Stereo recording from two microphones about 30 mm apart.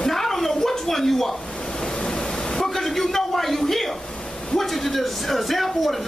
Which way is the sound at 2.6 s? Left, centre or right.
Centre.